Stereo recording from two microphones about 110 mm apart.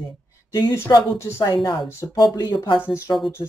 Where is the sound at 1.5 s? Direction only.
40° left (ahead or behind).